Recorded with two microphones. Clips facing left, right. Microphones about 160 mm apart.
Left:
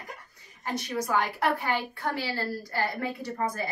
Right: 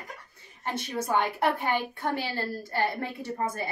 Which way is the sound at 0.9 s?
25° right (ahead or behind).